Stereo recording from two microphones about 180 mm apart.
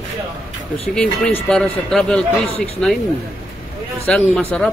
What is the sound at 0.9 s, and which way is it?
A man's voice, 5° left (ahead or behind).